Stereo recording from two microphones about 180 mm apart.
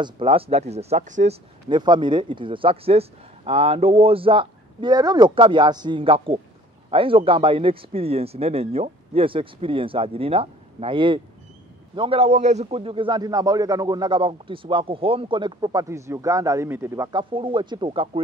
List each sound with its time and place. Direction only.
0.0 s speech: 30° right (ahead or behind)
1.7 s a man's voice: 25° right (ahead or behind)